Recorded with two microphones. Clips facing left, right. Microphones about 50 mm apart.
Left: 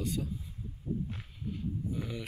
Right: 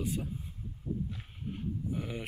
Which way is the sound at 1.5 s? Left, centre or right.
Right.